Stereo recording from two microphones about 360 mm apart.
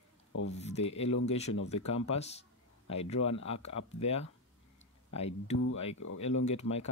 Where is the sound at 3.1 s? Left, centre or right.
Left.